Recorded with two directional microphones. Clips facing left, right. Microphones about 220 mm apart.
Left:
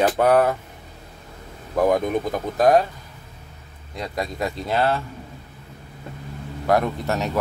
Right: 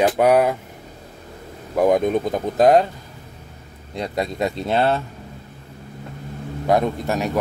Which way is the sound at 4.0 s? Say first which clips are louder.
Right 4 dB; 25° right (ahead or behind).